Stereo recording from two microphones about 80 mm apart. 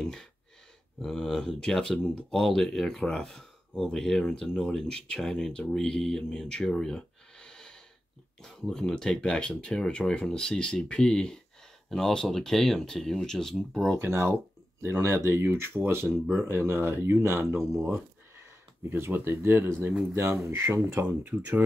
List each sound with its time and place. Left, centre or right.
0.0 s speech: centre
13.9 s speech: right
16.1 s speech: centre
16.4 s speech: right
18.9 s speech: right
21.0 s speech: right